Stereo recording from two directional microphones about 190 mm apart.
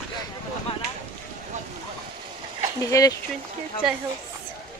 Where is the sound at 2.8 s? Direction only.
20° left (ahead or behind).